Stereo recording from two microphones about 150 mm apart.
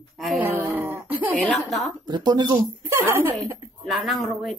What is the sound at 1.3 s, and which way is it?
Speech, centre (ahead or behind).